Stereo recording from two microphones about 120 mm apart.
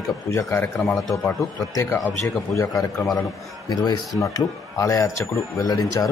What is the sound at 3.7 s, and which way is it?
Speech, 35° left (ahead or behind).